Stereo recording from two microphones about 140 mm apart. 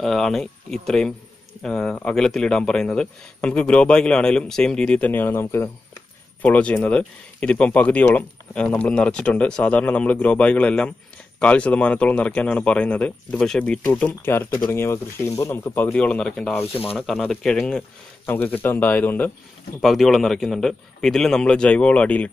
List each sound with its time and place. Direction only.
0.0 s a man's voice: 5° left (ahead or behind)
19.8 s a man's voice: centre (ahead or behind)